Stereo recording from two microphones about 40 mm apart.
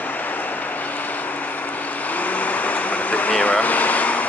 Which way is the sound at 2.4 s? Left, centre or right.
Left.